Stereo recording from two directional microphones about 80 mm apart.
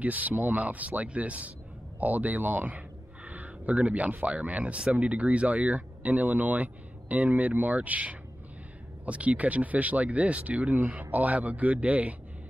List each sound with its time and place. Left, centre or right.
0.0 s speech: centre